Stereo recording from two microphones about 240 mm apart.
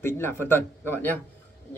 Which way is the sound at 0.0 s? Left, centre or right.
Centre.